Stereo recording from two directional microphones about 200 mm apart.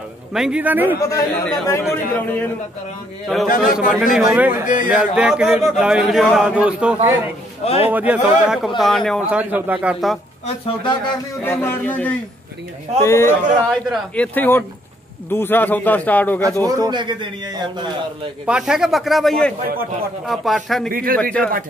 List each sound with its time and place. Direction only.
0.3 s a man's voice: 5° right (ahead or behind)
1.7 s a man's voice: 10° left (ahead or behind)
3.4 s a man's voice: 45° left (ahead or behind)
4.0 s a man's voice: centre (ahead or behind)
4.6 s speech: 40° left (ahead or behind)
4.9 s a man's voice: 5° right (ahead or behind)
7.6 s speech: 30° left (ahead or behind)
7.9 s a man's voice: 10° right (ahead or behind)
10.4 s speech: 25° left (ahead or behind)
11.4 s a man's voice: 10° left (ahead or behind)
16.6 s a man's voice: 20° right (ahead or behind)
18.4 s a man's voice: 5° right (ahead or behind)
20.9 s a man's voice: 45° right (ahead or behind)
21.2 s a man's voice: 5° left (ahead or behind)